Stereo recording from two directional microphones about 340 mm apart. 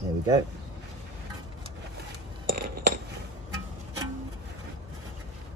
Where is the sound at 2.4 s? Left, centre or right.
Right.